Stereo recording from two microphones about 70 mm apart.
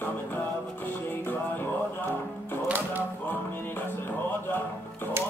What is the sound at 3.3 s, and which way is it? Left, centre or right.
Music, left.